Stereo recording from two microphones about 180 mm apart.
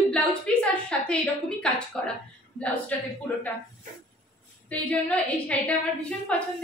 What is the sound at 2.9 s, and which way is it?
Speech, 5° left (ahead or behind).